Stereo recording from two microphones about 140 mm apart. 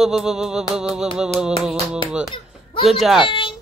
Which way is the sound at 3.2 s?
35° left (ahead or behind).